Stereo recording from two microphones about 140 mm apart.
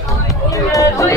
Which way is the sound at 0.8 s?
25° left (ahead or behind).